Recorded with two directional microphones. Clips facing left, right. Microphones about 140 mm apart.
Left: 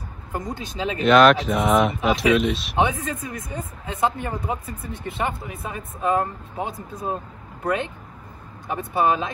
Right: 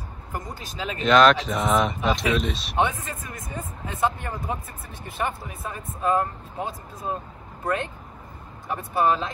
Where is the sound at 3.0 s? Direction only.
25° left (ahead or behind).